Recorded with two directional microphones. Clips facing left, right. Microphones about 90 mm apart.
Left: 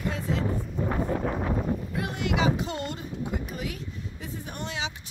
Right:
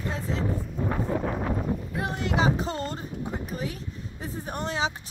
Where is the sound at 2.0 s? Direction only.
35° right (ahead or behind).